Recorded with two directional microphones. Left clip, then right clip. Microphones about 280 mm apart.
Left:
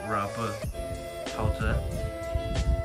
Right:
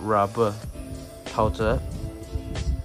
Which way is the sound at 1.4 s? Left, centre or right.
Left.